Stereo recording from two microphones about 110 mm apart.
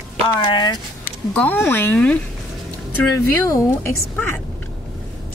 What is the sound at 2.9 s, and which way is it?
Speech, 25° left (ahead or behind).